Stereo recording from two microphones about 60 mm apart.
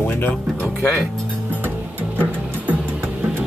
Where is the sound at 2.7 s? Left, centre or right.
Right.